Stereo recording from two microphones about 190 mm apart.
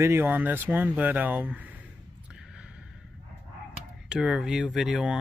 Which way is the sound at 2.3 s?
5° right (ahead or behind).